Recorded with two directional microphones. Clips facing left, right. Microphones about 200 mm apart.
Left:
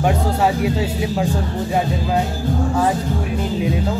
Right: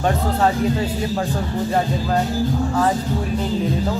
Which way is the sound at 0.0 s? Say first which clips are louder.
Left 1 dB; 10° left (ahead or behind).